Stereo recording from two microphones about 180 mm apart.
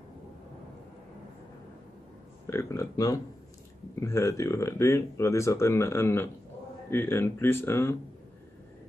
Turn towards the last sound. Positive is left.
turn(degrees=15)  # may be behind; listen again after turning